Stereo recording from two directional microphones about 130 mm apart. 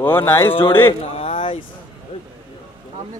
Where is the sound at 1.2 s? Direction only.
45° left (ahead or behind).